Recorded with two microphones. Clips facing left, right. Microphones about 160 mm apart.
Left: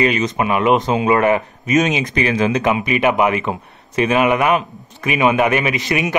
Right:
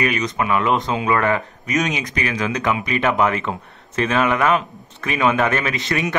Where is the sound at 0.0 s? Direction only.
25° left (ahead or behind).